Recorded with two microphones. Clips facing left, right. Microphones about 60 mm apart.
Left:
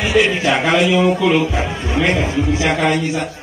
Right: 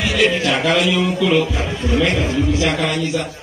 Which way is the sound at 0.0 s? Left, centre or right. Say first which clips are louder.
Left 2 dB; left.